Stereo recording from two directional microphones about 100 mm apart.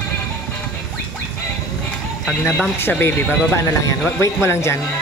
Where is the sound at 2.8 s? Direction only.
20° left (ahead or behind).